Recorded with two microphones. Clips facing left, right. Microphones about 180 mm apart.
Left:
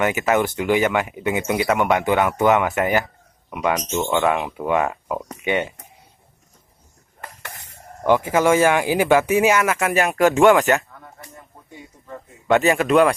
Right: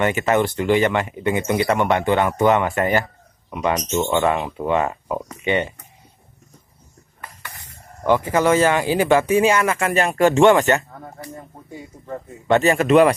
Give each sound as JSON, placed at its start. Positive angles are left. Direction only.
{"t": 0.0, "sound": "speech", "side_deg": 5}
{"t": 8.1, "sound": "speech", "side_deg": 10}
{"t": 10.9, "sound": "a sound", "side_deg": -40}
{"t": 12.4, "sound": "speech", "side_deg": 0}